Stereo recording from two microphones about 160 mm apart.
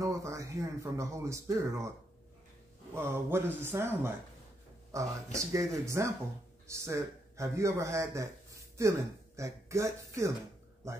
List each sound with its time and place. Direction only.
0.0 s speech: 20° right (ahead or behind)
2.9 s a man's voice: 15° right (ahead or behind)